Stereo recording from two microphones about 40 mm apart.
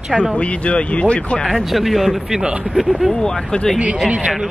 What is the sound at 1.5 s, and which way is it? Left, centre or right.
Speech, centre.